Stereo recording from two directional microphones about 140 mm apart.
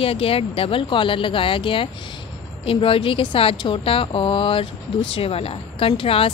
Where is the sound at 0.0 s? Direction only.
45° left (ahead or behind).